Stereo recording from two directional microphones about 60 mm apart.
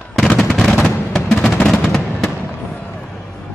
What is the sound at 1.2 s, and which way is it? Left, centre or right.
Music, centre.